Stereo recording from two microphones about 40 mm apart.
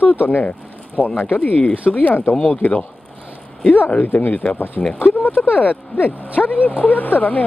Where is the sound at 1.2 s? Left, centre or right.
Left.